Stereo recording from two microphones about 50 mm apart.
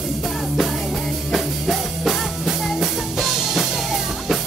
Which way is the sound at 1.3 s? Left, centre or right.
Centre.